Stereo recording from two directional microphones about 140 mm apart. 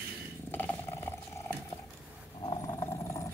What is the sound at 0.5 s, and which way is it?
Purr, 15° left (ahead or behind).